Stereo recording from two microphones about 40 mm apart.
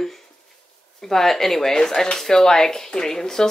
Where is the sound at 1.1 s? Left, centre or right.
Centre.